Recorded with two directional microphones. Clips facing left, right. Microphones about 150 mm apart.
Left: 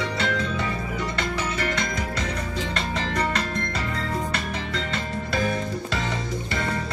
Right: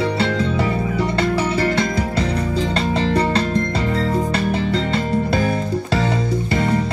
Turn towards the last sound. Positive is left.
turn(degrees=-30)  # may be behind; listen again after turning